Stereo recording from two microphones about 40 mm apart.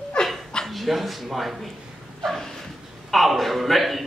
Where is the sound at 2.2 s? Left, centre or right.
Centre.